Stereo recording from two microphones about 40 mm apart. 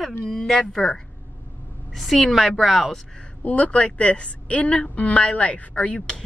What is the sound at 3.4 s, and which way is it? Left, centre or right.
A woman's voice, left.